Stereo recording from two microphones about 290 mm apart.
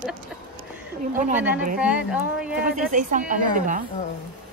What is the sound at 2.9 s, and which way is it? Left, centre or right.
Speech, right.